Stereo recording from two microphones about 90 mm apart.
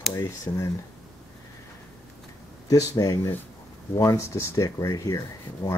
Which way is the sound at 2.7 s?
40° left (ahead or behind).